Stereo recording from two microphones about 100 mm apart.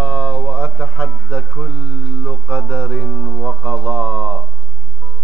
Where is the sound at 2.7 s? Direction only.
30° right (ahead or behind).